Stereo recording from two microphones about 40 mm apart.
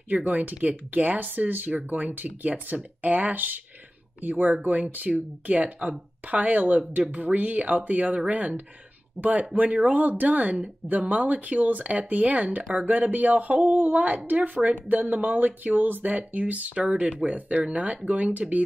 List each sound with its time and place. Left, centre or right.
0.3 s speech: right
16.7 s speech: right